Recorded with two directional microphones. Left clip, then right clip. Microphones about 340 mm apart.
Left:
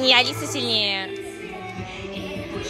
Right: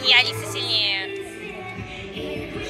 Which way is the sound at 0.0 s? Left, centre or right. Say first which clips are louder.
Even; centre.